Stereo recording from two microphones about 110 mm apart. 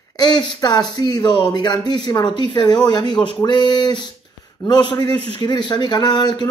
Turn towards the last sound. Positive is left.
turn(degrees=40)  # may be behind; listen again after turning